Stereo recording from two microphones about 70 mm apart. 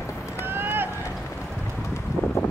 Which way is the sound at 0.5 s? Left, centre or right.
Right.